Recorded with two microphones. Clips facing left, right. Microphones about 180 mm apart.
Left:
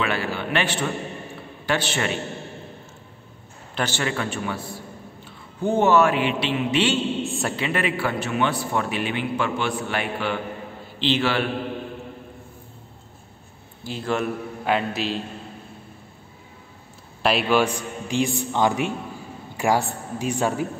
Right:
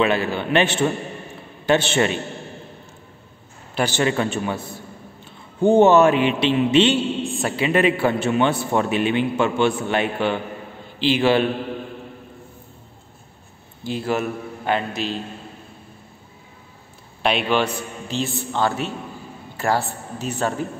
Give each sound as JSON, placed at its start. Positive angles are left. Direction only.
{"t": 0.0, "sound": "a man's voice", "side_deg": -20}
{"t": 3.7, "sound": "a man's voice", "side_deg": -15}
{"t": 7.2, "sound": "a sound", "side_deg": 0}
{"t": 7.5, "sound": "a man's voice", "side_deg": -20}
{"t": 11.0, "sound": "a man's voice", "side_deg": -15}
{"t": 13.8, "sound": "a man's voice", "side_deg": -10}
{"t": 17.2, "sound": "a man's voice", "side_deg": 5}